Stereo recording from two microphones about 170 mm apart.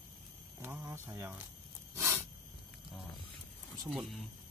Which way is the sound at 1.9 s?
15° right (ahead or behind).